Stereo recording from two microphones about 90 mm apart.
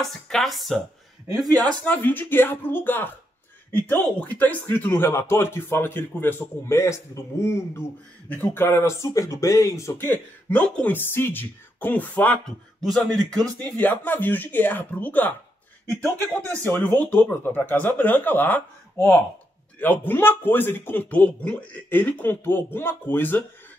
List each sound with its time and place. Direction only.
0.0 s speech: centre (ahead or behind)
1.9 s speech: 20° left (ahead or behind)
12.4 s speech: 5° left (ahead or behind)
16.3 s speech: 15° left (ahead or behind)